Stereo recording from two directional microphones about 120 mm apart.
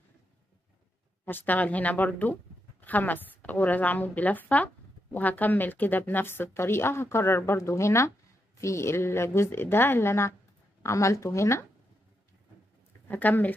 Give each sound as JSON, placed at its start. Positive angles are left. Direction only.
{"t": 1.2, "sound": "a woman's voice", "side_deg": 15}
{"t": 13.1, "sound": "a woman's voice", "side_deg": 15}